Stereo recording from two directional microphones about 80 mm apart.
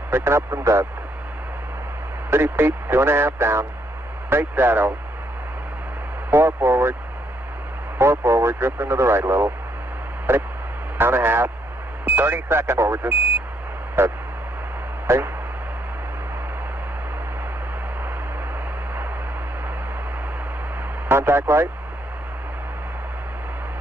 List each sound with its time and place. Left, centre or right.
0.1 s speech: right
2.3 s speech: right
6.3 s speech: right
8.0 s speech: right
15.0 s a sound: right
21.1 s speech: right